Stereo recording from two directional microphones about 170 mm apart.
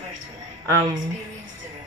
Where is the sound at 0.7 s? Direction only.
20° right (ahead or behind).